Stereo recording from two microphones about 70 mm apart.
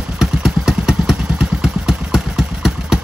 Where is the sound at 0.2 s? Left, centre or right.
Centre.